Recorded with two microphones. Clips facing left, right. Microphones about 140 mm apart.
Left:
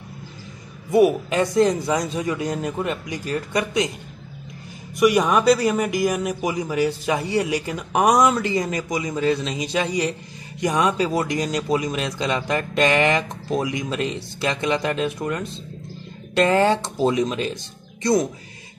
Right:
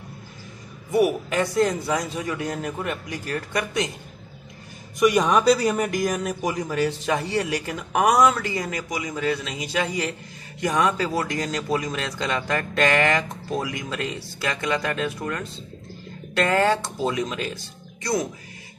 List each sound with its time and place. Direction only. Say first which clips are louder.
0.9 s a man's voice: left 4 dB; 20° left (ahead or behind)
4.9 s a man's voice: left 1 dB; 5° left (ahead or behind); by 17.6 s 20° left (ahead or behind)